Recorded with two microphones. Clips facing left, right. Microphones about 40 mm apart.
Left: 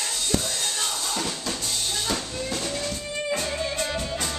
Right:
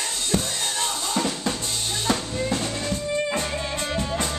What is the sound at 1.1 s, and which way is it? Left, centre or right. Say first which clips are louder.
Drum kit: right 5 dB; centre.